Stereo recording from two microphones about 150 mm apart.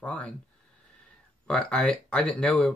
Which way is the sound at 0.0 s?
10° left (ahead or behind).